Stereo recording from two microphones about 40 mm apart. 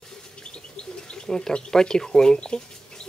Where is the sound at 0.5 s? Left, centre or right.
Left.